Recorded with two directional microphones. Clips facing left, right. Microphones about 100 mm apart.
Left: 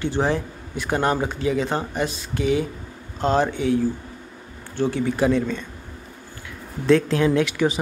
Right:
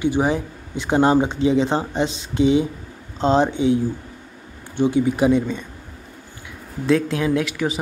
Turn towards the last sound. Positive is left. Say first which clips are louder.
# left 1 dB
turn(degrees=0)  # may be behind; listen again after turning